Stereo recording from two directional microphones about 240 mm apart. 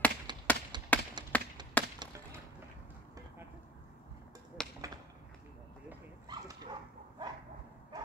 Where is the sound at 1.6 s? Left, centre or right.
Centre.